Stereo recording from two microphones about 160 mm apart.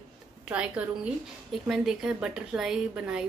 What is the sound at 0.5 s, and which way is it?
A child's voice, 5° right (ahead or behind).